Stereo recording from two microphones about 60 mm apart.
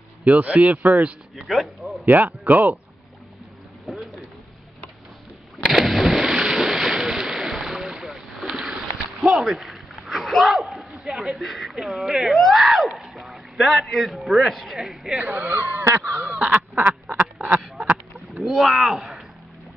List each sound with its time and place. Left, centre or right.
0.2 s speech: right
1.3 s speech: centre
2.0 s speech: right
3.8 s a sound: centre
5.7 s vehicle: centre
6.6 s boat: centre
9.4 s a sound: centre
11.1 s speech: centre
15.1 s speech: right
17.5 s duck: centre
18.3 s speech: centre